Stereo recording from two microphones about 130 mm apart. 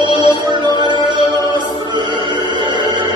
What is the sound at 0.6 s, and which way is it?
Music, 35° right (ahead or behind).